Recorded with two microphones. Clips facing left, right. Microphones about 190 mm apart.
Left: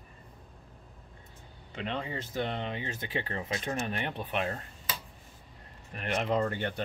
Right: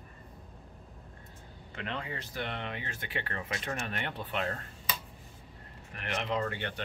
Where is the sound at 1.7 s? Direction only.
25° left (ahead or behind).